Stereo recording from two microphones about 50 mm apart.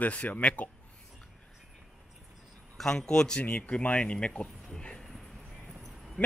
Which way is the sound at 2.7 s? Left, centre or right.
Centre.